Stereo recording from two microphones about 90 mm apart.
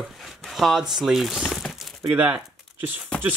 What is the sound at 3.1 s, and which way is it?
Speech, 10° left (ahead or behind).